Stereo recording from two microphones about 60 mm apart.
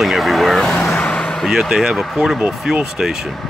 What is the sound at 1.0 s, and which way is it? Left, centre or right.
Vehicle, centre.